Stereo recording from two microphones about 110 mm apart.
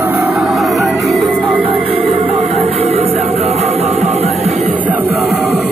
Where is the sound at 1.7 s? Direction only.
65° right (ahead or behind).